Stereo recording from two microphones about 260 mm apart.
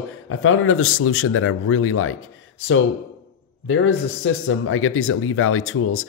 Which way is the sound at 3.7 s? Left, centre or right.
Left.